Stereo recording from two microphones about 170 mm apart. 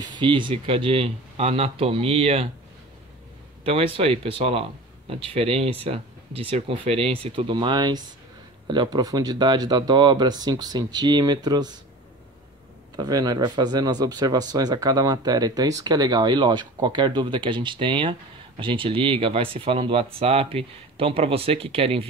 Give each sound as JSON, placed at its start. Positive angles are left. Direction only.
{"t": 0.0, "sound": "speech", "side_deg": -25}
{"t": 3.6, "sound": "speech", "side_deg": -35}
{"t": 12.9, "sound": "speech", "side_deg": -25}